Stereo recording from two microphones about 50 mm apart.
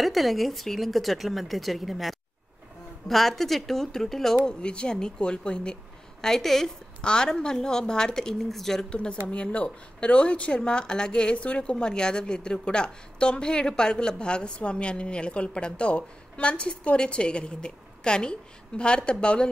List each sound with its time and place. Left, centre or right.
0.0 s a woman's voice: centre
4.6 s a woman's voice: centre
6.2 s a woman's voice: centre
8.9 s a woman's voice: left